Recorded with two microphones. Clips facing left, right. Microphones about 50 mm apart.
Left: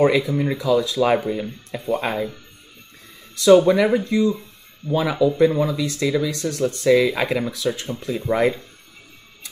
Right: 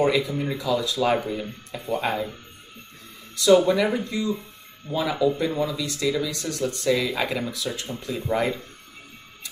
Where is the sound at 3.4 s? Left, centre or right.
Left.